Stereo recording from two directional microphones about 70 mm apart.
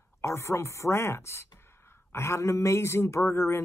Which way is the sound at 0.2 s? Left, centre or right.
Left.